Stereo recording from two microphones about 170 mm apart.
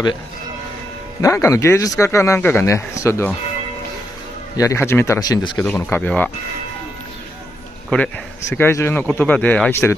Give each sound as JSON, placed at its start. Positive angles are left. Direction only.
{"t": 1.2, "sound": "speech", "side_deg": 15}
{"t": 4.6, "sound": "speech", "side_deg": 15}
{"t": 5.7, "sound": "speech", "side_deg": 15}
{"t": 7.9, "sound": "speech", "side_deg": 10}